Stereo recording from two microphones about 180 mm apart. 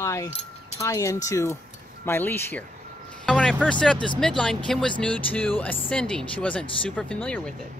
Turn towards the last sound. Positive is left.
turn(degrees=5)  # may be behind; listen again after turning